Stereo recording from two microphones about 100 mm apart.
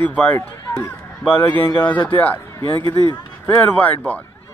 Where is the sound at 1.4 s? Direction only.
45° left (ahead or behind).